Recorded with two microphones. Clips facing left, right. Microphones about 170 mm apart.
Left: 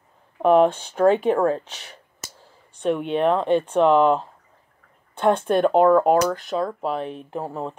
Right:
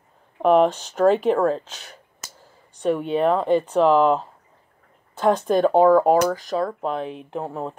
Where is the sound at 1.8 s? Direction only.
Centre (ahead or behind).